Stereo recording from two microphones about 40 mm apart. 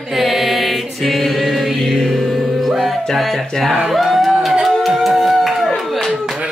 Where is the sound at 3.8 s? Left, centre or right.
Centre.